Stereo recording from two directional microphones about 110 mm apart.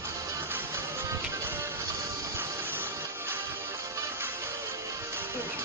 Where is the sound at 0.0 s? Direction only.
20° right (ahead or behind).